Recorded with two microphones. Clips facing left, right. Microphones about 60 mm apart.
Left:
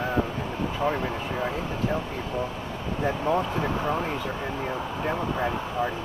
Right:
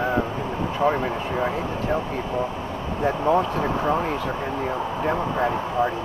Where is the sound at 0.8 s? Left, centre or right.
Centre.